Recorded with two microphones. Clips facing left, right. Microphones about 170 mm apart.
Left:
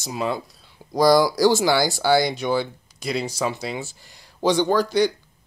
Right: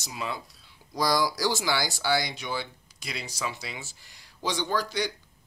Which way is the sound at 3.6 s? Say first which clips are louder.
Left 11 dB; 50° left (ahead or behind).